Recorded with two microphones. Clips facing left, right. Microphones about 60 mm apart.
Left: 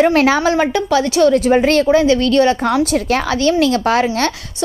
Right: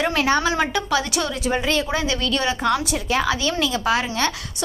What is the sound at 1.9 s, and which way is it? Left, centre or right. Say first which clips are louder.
Speech: left 12 dB; left.